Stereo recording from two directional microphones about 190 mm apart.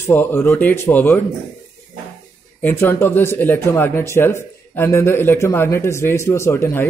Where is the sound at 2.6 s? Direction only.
10° left (ahead or behind).